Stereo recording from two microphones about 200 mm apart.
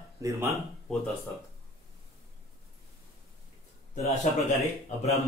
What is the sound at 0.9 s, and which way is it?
Speech, centre (ahead or behind).